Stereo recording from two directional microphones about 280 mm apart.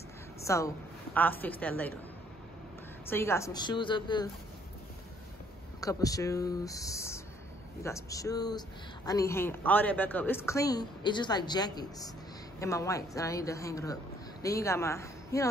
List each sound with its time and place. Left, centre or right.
0.4 s a sound: centre
1.1 s a woman's voice: centre
3.1 s speech: centre
5.8 s speech: centre